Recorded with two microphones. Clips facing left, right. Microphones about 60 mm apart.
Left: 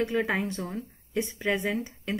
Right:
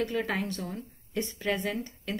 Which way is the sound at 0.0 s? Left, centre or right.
Centre.